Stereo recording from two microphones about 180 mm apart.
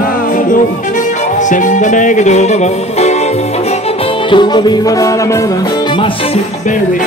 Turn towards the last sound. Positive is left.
turn(degrees=20)  # may be behind; listen again after turning